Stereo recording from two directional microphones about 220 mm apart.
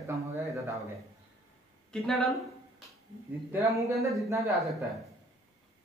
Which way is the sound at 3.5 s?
10° right (ahead or behind).